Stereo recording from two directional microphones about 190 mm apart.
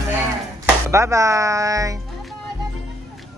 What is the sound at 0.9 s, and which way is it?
Speech, 15° right (ahead or behind).